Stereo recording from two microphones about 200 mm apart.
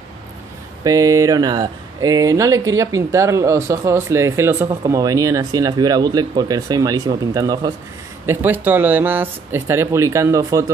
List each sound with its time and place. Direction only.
0.8 s speech: 15° right (ahead or behind)